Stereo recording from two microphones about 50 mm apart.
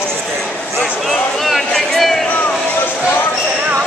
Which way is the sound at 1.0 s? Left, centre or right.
Centre.